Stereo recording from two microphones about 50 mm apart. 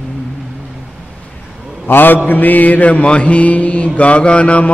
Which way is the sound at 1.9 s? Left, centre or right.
Left.